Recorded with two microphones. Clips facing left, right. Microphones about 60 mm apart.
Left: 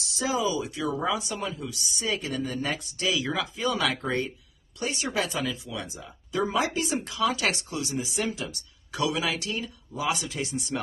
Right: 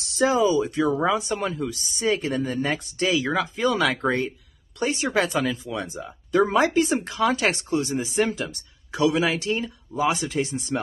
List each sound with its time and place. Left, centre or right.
0.0 s speech: right